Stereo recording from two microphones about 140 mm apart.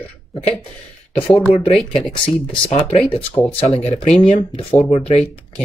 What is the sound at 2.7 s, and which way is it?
Speech, 50° left (ahead or behind).